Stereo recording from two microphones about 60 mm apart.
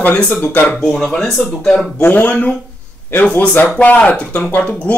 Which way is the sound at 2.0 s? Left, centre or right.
Left.